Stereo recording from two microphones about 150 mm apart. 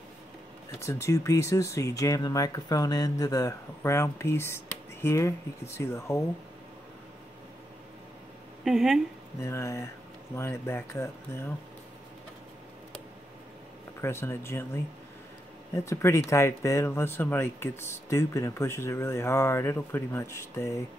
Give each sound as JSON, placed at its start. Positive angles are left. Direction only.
{"t": 0.7, "sound": "speech", "side_deg": 20}
{"t": 8.6, "sound": "speech", "side_deg": 0}
{"t": 9.4, "sound": "speech", "side_deg": 20}
{"t": 14.0, "sound": "speech", "side_deg": 15}